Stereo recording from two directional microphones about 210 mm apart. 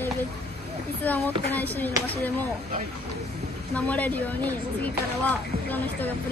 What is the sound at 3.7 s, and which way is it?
Speech, 5° left (ahead or behind).